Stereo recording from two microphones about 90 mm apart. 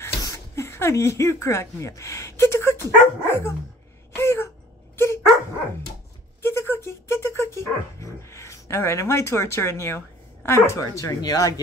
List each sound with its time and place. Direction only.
0.0 s a sound: 35° left (ahead or behind)
4.1 s gasp: 30° left (ahead or behind)
4.9 s dog: 30° left (ahead or behind)
6.4 s speech: 30° left (ahead or behind); by 11.6 s 45° left (ahead or behind)